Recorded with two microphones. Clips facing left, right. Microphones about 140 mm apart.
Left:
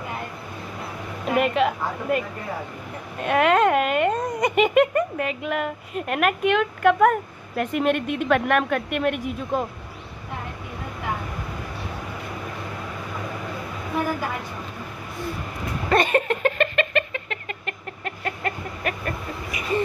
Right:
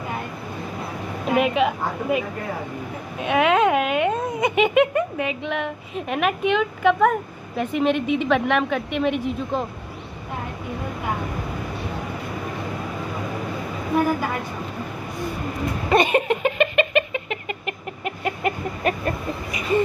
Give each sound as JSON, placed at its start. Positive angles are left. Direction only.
{"t": 1.3, "sound": "a woman's voice", "side_deg": -5}
{"t": 15.9, "sound": "a sound", "side_deg": -10}
{"t": 18.9, "sound": "chicken", "side_deg": -25}